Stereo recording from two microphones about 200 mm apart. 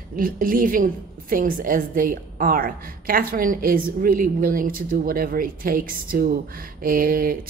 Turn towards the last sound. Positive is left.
turn(degrees=-45)  # may be behind; listen again after turning